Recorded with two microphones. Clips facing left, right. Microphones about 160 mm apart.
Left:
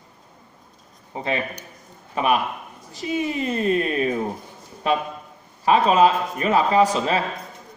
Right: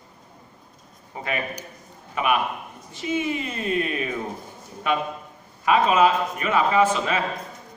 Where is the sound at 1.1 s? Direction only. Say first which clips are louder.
Left 3 dB; 30° left (ahead or behind).